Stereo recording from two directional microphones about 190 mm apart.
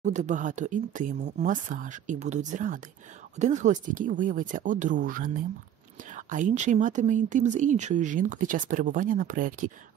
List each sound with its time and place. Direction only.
0.0 s speech: 40° right (ahead or behind)